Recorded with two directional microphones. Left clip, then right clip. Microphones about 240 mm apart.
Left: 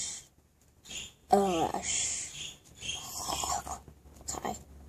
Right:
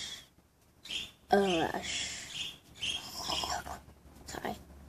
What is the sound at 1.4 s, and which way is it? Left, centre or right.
Speech, centre.